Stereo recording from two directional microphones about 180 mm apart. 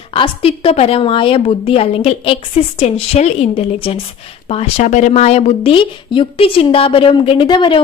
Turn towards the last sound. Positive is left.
turn(degrees=25)  # may be behind; listen again after turning